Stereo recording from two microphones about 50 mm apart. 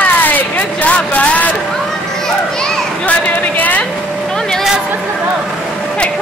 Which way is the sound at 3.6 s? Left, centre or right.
Left.